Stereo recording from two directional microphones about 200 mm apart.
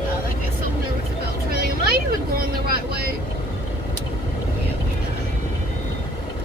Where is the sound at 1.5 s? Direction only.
50° right (ahead or behind).